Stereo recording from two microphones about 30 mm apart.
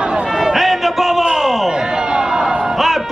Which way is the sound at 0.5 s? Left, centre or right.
Centre.